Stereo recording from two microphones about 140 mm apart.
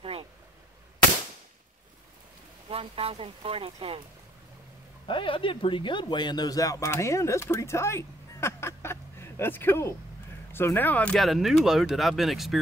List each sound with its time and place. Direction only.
0.0 s a sound: 40° right (ahead or behind)
2.7 s speech: 45° right (ahead or behind)
5.0 s speech: 40° left (ahead or behind); by 12.5 s centre (ahead or behind)